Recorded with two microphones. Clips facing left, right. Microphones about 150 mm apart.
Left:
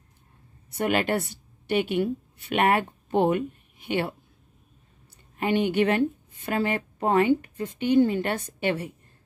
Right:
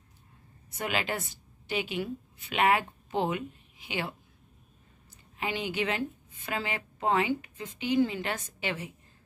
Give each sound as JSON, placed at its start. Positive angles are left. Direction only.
{"t": 0.7, "sound": "a woman's voice", "side_deg": 55}
{"t": 5.4, "sound": "a woman's voice", "side_deg": 55}